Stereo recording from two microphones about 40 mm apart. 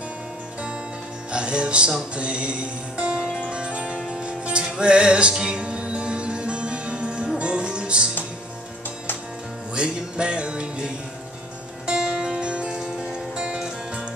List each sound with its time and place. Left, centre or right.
1.3 s music: right
9.8 s music: right